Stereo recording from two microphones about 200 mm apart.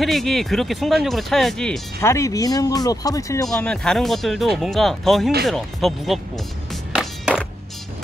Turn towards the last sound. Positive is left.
turn(degrees=0)  # may be behind; listen again after turning